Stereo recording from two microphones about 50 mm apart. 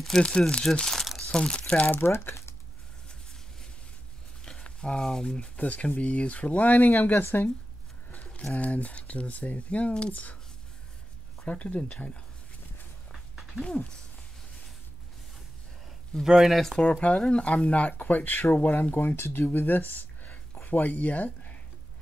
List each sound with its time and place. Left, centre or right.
0.2 s speech: centre
2.0 s speech: left
4.4 s a sound: centre
4.6 s speech: left
5.6 s speech: left
8.3 s speech: left
11.4 s speech: left
13.1 s a sound: centre
16.3 s speech: centre
17.3 s speech: left